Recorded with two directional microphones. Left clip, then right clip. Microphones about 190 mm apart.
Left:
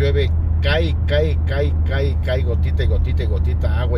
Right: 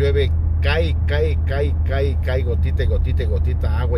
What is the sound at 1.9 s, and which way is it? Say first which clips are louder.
Speech: even; 25° right (ahead or behind).